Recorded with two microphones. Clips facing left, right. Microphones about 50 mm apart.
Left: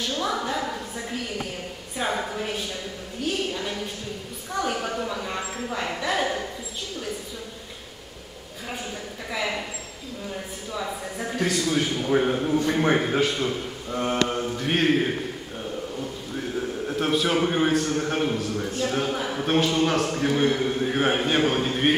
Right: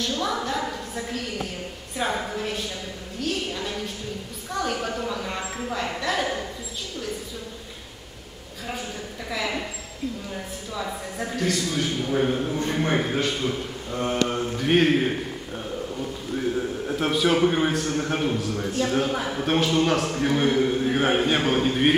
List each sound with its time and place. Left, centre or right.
0.2 s a sound: centre
10.7 s speech: centre
11.3 s a man's voice: centre